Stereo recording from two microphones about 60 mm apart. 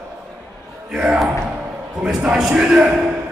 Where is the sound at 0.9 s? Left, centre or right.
Centre.